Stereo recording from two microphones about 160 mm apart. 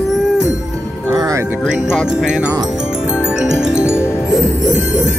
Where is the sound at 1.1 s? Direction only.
20° right (ahead or behind).